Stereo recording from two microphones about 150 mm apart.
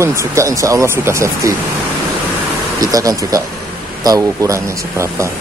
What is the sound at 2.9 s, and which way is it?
A man's voice, 25° right (ahead or behind).